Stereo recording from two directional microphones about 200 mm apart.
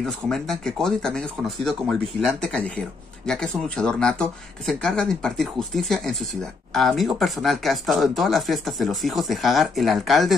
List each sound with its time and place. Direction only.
0.0 s speech: 5° left (ahead or behind)